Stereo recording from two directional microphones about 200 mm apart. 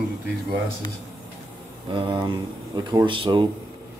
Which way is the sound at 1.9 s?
25° right (ahead or behind).